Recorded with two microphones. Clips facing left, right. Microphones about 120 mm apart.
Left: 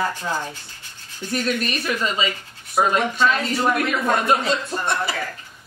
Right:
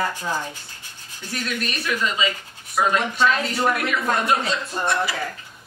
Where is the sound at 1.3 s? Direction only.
40° left (ahead or behind).